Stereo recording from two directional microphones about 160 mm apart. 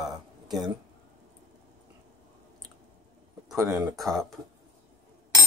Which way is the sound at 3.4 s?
20° right (ahead or behind).